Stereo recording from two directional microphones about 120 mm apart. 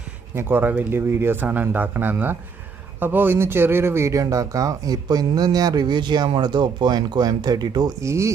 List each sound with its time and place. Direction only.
0.3 s a man's voice: 20° right (ahead or behind)